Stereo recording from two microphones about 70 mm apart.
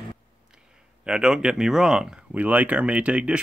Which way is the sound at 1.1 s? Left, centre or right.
Centre.